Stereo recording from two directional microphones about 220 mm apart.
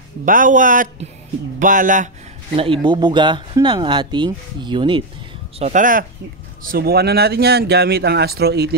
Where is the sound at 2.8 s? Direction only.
20° right (ahead or behind).